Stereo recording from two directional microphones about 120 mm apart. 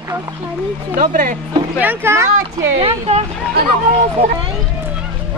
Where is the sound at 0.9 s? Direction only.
90° right.